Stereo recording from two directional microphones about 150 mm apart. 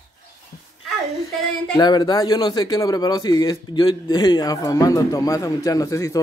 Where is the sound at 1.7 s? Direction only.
30° left (ahead or behind).